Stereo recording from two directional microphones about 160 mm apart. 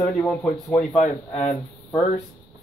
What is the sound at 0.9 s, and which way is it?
Speech, 45° left (ahead or behind).